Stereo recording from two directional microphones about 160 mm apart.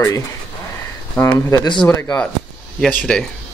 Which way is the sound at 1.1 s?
10° left (ahead or behind).